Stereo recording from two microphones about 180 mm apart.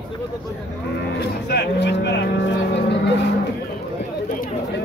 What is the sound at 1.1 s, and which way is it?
Speech, 65° left (ahead or behind).